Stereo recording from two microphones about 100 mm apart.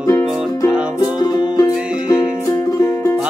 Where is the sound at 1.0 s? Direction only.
45° left (ahead or behind).